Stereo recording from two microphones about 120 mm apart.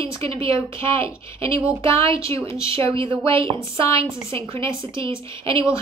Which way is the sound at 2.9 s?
45° right (ahead or behind).